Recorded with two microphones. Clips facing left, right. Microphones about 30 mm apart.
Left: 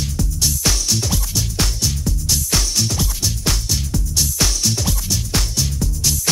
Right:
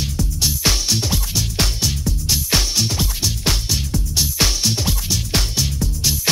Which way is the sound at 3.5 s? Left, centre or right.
Centre.